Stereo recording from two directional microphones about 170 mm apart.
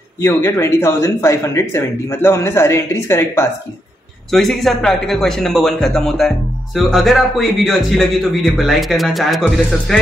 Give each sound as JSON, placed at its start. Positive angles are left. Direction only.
{"t": 0.2, "sound": "speech", "side_deg": 15}
{"t": 4.3, "sound": "a man's voice", "side_deg": 0}